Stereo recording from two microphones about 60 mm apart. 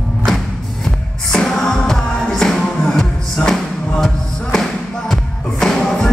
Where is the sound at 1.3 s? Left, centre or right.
Centre.